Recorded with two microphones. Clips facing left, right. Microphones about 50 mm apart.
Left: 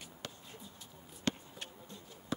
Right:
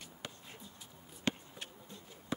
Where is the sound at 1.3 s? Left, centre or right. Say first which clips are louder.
Even; centre.